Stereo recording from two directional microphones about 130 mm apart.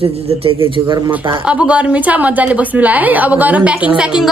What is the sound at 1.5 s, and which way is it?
A woman's voice, 10° right (ahead or behind).